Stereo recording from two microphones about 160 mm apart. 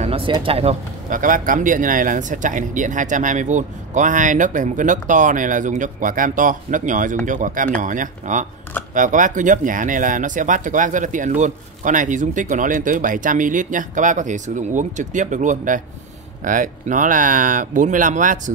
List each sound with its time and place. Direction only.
0.0 s speech: 35° right (ahead or behind)
1.1 s speech: 55° right (ahead or behind)